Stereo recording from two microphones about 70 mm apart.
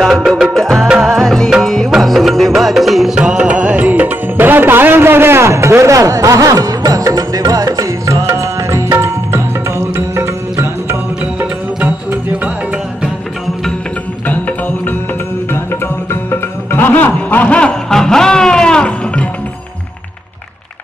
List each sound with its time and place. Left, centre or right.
0.0 s music: centre; by 11.0 s right
16.1 s music: left; by 19.2 s centre